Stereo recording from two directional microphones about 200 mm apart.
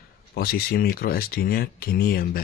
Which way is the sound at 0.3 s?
50° left (ahead or behind).